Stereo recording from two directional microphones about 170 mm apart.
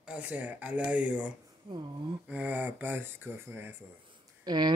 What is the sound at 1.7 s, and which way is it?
Speech, 25° right (ahead or behind).